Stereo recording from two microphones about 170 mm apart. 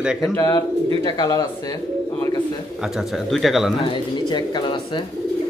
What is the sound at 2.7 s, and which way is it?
Speech, 5° right (ahead or behind).